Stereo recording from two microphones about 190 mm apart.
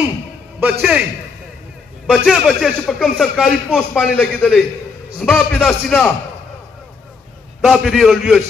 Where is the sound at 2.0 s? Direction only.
Centre (ahead or behind).